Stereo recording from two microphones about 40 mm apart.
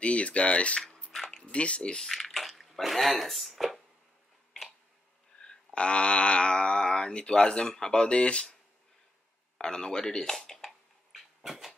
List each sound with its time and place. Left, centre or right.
0.0 s speech: left
2.0 s speech: centre
5.4 s speech: left
9.6 s speech: centre
10.4 s a sound: centre
11.4 s dog: centre